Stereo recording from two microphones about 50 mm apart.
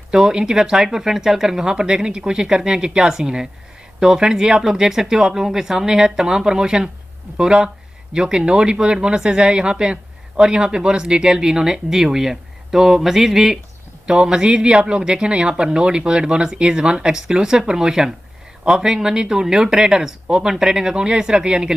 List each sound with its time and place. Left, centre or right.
0.1 s speech: centre